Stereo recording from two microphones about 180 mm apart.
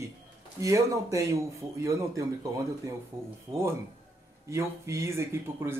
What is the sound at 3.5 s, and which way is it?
Speech, 25° right (ahead or behind).